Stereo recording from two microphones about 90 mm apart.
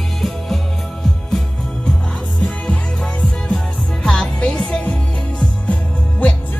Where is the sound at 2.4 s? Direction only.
10° left (ahead or behind).